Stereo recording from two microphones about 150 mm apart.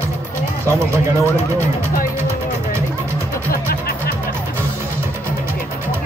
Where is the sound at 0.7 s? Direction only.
20° right (ahead or behind).